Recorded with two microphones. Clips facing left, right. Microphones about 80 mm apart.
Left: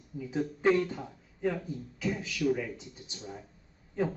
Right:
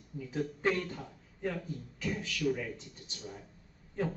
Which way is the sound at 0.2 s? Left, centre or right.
Centre.